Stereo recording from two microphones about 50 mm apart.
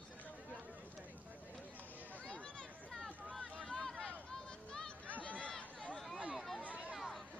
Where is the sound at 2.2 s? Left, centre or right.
Centre.